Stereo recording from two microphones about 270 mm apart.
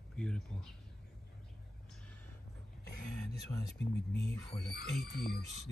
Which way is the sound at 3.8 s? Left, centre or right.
Left.